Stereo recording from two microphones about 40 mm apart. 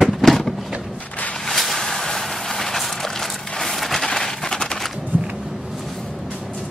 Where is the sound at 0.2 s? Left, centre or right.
Centre.